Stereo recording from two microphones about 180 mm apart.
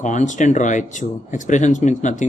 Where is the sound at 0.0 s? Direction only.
40° left (ahead or behind).